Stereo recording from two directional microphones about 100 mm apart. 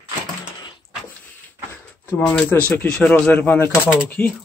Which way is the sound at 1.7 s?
20° left (ahead or behind).